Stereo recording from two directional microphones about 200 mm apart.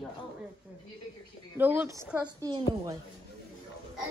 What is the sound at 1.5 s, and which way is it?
A child's voice, 10° right (ahead or behind).